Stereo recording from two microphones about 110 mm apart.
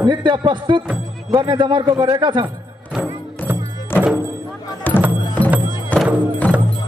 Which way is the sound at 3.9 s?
20° left (ahead or behind).